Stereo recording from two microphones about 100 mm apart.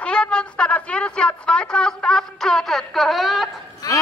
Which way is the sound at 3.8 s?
40° left (ahead or behind).